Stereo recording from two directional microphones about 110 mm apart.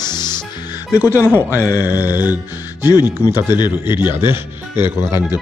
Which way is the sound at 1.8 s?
20° right (ahead or behind).